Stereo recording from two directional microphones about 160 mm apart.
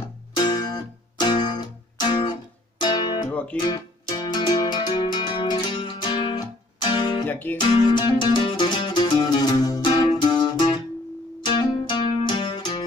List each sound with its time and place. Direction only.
0.4 s music: 25° left (ahead or behind)
7.2 s music: 10° left (ahead or behind)
7.5 s music: 30° left (ahead or behind)